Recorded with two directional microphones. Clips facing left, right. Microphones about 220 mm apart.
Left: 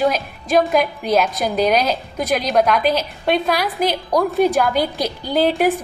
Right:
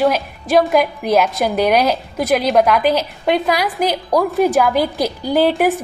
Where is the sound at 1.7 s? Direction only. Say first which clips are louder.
Right 3 dB; 5° right (ahead or behind).